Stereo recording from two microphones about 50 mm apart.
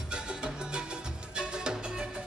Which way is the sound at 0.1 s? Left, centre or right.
Centre.